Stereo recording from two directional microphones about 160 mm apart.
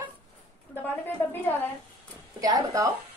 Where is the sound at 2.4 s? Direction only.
20° right (ahead or behind).